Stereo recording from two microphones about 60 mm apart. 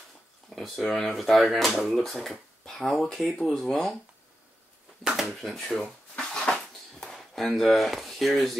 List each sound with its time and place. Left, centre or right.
0.5 s speech: centre
5.0 s speech: centre
5.7 s dishes: centre
7.2 s speech: centre